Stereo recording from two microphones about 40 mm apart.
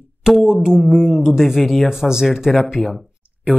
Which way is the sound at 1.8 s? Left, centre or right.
Centre.